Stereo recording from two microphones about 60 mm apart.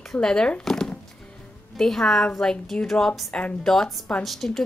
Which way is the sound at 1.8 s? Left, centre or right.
Centre.